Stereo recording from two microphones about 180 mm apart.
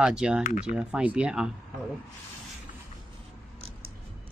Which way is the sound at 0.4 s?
45° left (ahead or behind).